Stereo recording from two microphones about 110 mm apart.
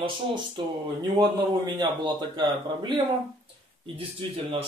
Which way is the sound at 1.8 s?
40° right (ahead or behind).